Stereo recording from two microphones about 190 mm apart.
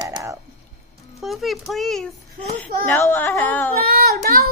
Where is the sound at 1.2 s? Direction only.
Centre (ahead or behind).